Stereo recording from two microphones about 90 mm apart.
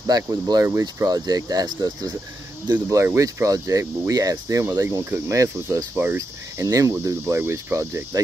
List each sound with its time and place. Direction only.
0.0 s speech: 45° right (ahead or behind)
0.7 s speech: 30° right (ahead or behind)
1.0 s speech: 45° right (ahead or behind)